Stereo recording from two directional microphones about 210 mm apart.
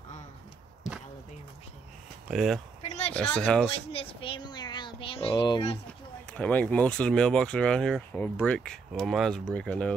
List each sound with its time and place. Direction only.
2.3 s speech: centre (ahead or behind)
3.9 s a sound: 25° left (ahead or behind)
5.9 s speech: 5° left (ahead or behind)